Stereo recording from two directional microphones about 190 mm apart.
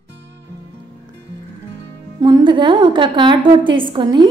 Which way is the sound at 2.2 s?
25° right (ahead or behind).